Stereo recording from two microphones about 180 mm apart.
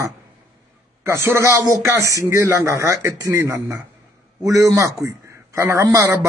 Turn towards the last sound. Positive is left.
turn(degrees=-15)  # may be behind; listen again after turning